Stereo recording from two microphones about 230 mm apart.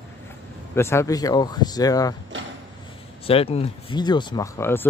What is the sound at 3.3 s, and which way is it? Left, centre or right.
Speech, left.